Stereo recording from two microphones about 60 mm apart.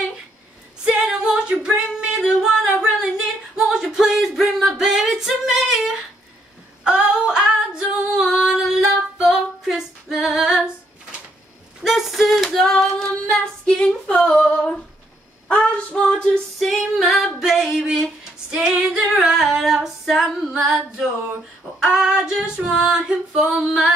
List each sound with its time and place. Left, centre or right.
0.8 s female singing: centre
1.5 s singing: centre
3.5 s music: centre
6.8 s female singing: centre
11.8 s female singing: centre
16.5 s female singing: centre